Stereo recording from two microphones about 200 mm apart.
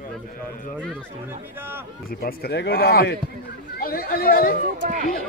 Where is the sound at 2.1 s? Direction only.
50° left (ahead or behind).